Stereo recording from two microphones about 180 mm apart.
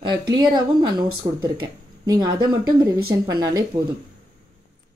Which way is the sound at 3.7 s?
40° right (ahead or behind).